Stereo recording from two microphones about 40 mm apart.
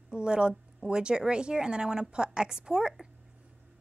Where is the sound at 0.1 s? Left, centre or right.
Right.